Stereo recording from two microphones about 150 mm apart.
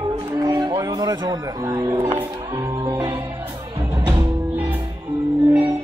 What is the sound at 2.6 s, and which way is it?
Music, 25° right (ahead or behind).